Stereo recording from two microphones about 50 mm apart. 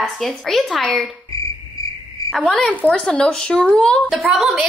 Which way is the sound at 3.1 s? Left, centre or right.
Centre.